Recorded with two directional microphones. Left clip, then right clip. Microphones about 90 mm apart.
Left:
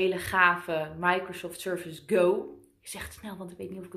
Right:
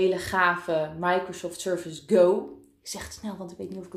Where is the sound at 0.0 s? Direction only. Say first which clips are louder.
Right 1 dB; 35° right (ahead or behind).